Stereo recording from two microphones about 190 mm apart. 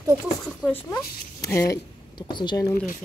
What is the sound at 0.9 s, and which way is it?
Speech, 15° left (ahead or behind).